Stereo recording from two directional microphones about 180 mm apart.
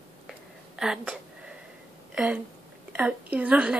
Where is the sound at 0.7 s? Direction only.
5° right (ahead or behind).